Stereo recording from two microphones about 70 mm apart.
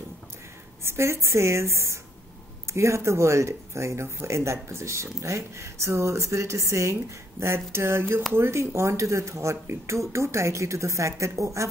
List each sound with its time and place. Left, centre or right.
0.8 s speech: right